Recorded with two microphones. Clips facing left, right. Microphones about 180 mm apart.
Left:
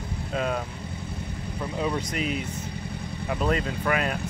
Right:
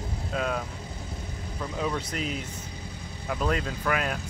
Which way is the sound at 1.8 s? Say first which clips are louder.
Left 2 dB; 5° left (ahead or behind).